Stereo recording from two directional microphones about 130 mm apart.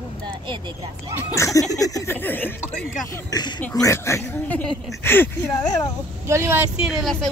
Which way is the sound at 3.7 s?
25° left (ahead or behind).